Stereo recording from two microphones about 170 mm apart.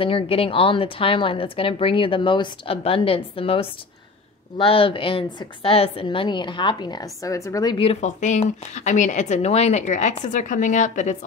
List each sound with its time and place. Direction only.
0.0 s a woman's voice: 35° left (ahead or behind)
7.8 s speech: 40° left (ahead or behind)